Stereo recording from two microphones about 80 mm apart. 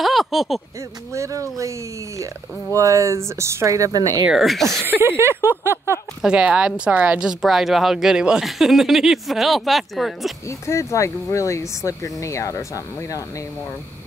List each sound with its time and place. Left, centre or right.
0.0 s a sound: centre
1.1 s speech: right
4.3 s a woman's voice: centre
4.8 s speech: right
6.2 s a woman's voice: centre
10.7 s speech: left